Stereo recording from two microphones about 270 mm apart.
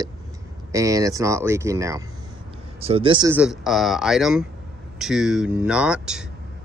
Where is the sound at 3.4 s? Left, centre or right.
Centre.